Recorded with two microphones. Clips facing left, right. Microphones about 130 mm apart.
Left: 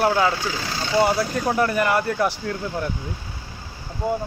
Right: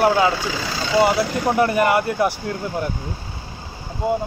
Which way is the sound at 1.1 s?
80° right.